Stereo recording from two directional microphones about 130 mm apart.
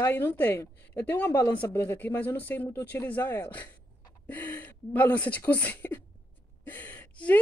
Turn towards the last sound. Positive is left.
turn(degrees=10)  # may be behind; listen again after turning